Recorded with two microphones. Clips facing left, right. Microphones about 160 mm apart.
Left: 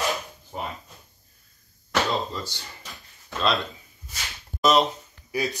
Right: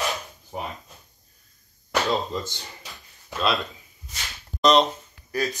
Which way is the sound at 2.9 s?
Centre (ahead or behind).